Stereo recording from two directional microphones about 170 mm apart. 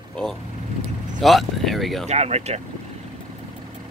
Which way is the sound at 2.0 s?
40° right (ahead or behind).